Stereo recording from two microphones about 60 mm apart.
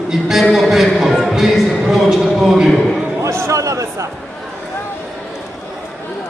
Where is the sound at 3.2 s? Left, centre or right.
Right.